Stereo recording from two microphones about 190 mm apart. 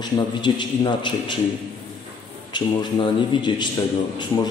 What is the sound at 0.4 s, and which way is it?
A man's voice, 25° left (ahead or behind).